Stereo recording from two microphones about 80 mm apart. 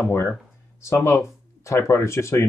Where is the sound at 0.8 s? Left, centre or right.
Left.